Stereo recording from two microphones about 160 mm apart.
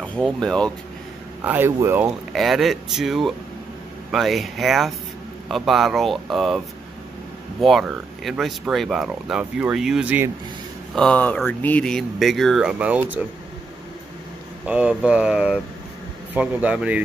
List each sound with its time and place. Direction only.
0.0 s speech: 5° left (ahead or behind)
1.4 s speech: 10° right (ahead or behind)
2.3 s speech: centre (ahead or behind)
7.6 s speech: centre (ahead or behind)
11.0 s speech: 10° left (ahead or behind); by 13.2 s 10° right (ahead or behind)
14.7 s speech: 5° right (ahead or behind)